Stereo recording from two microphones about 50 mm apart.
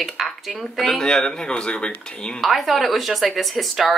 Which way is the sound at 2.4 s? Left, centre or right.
Centre.